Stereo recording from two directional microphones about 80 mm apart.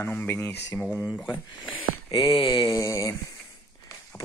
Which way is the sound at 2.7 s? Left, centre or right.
Left.